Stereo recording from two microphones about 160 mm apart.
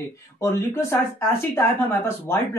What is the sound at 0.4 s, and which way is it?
Speech, 15° left (ahead or behind).